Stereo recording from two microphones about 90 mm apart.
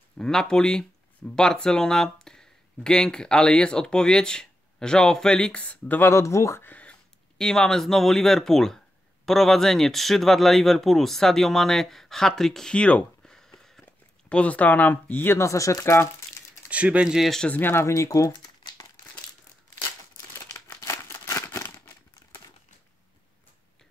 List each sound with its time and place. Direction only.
0.2 s speech: 5° left (ahead or behind); by 6.6 s 35° left (ahead or behind)
6.6 s speech: 15° left (ahead or behind); by 16.4 s 30° left (ahead or behind)
16.6 s speech: 15° right (ahead or behind)
17.4 s speech: 20° left (ahead or behind); by 18.3 s 35° left (ahead or behind)
20.8 s a sound: 35° left (ahead or behind)